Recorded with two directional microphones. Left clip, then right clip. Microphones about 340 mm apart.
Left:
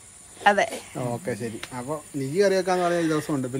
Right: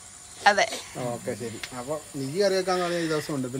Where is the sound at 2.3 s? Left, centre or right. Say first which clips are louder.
Left 3 dB; left.